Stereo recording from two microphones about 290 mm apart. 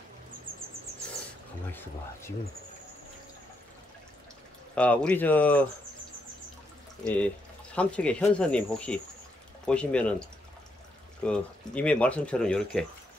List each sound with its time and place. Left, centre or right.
0.5 s bird: centre
1.7 s speech: centre
4.7 s speech: centre
7.7 s speech: centre
11.2 s speech: centre